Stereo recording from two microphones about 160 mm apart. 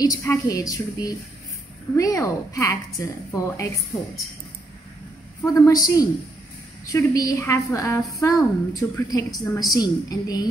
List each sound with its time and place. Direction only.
0.0 s a woman's voice: 20° left (ahead or behind)
5.4 s a woman's voice: 20° left (ahead or behind)